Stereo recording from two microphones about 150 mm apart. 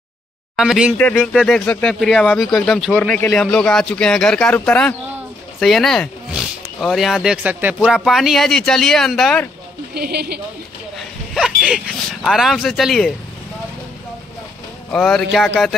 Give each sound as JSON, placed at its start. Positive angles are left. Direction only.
{"t": 0.6, "sound": "speech", "side_deg": -5}
{"t": 0.9, "sound": "a man's voice", "side_deg": 15}
{"t": 1.2, "sound": "a man's voice", "side_deg": 0}
{"t": 9.9, "sound": "a woman's voice", "side_deg": -90}
{"t": 11.0, "sound": "speech", "side_deg": -5}
{"t": 14.9, "sound": "speech", "side_deg": 5}